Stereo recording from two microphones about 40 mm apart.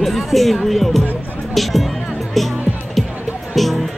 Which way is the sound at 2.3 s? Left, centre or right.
Centre.